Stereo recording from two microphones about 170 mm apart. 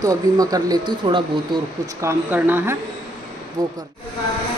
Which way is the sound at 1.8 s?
15° right (ahead or behind).